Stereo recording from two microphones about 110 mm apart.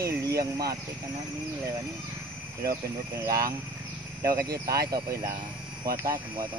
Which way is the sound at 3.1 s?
30° right (ahead or behind).